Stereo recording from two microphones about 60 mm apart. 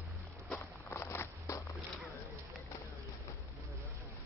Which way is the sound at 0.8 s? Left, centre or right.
Left.